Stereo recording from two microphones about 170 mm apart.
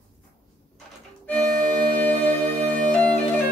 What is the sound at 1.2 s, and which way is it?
Music, 5° left (ahead or behind).